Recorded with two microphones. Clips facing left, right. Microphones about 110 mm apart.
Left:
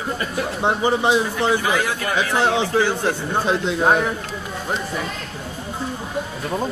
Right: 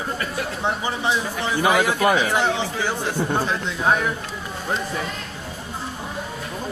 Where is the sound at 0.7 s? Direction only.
65° left (ahead or behind).